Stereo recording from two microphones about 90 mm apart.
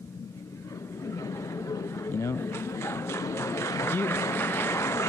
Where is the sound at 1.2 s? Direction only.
35° left (ahead or behind).